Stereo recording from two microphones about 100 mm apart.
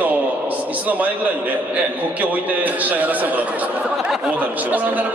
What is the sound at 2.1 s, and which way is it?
A man's voice, 15° right (ahead or behind).